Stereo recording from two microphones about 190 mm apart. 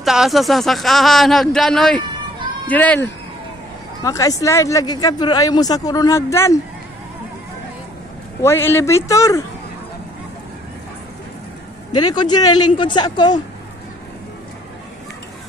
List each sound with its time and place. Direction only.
0.0 s speech: centre (ahead or behind); by 6.6 s 15° left (ahead or behind)
8.4 s speech: 15° left (ahead or behind)
12.0 s speech: 20° left (ahead or behind)